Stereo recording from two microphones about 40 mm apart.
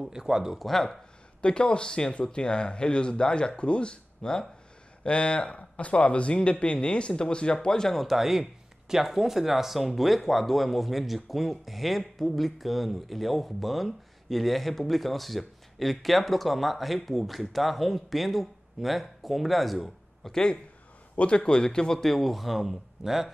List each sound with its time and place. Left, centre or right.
0.0 s speech: centre
0.6 s speech: centre
1.4 s speech: left
7.9 s speech: centre
21.2 s speech: left
22.0 s speech: centre